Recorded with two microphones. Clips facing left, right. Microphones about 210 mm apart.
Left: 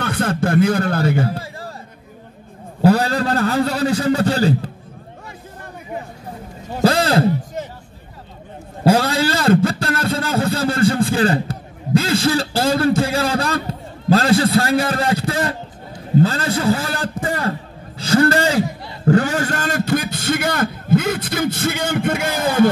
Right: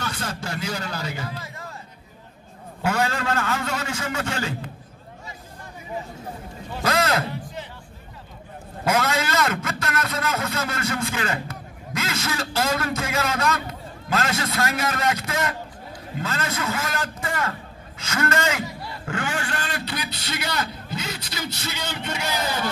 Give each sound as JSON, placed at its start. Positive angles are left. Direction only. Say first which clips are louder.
{"t": 0.0, "sound": "a man's voice", "louder": "left 11 dB", "side_deg": 55}
{"t": 1.4, "sound": "a sound", "louder": "left 6 dB", "side_deg": 35}
{"t": 2.8, "sound": "a man's voice", "louder": "left 9 dB", "side_deg": 35}
{"t": 6.7, "sound": "a man's voice", "louder": "left 7 dB", "side_deg": 30}
{"t": 7.6, "sound": "music", "louder": "left 8 dB", "side_deg": 45}
{"t": 8.8, "sound": "a man's voice", "louder": "left 7 dB", "side_deg": 30}